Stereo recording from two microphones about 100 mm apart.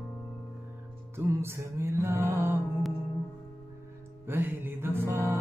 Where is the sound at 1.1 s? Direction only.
25° right (ahead or behind).